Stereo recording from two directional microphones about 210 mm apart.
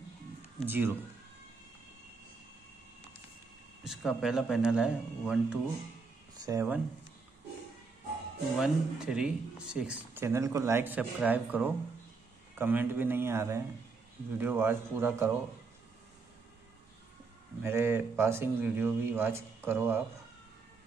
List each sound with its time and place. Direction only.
0.7 s speech: 10° right (ahead or behind)
3.8 s speech: 5° right (ahead or behind)
6.3 s speech: 15° right (ahead or behind)
8.5 s speech: centre (ahead or behind)
17.6 s speech: 10° right (ahead or behind)